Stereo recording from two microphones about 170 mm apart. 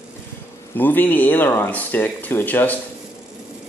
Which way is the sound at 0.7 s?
10° left (ahead or behind).